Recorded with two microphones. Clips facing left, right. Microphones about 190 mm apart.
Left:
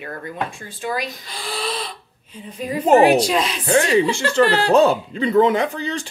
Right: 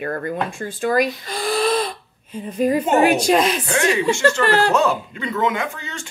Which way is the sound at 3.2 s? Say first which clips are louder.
Right 4 dB; 50° right (ahead or behind).